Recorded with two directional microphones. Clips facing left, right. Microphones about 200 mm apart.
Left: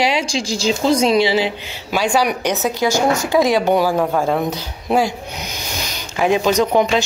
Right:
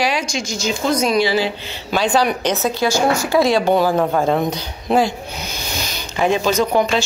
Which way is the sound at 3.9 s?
Centre (ahead or behind).